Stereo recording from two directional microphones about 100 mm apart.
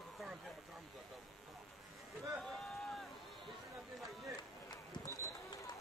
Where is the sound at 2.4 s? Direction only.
Centre (ahead or behind).